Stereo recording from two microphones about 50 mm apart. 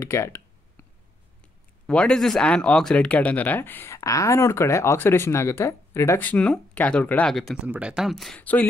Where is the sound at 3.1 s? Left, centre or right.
Left.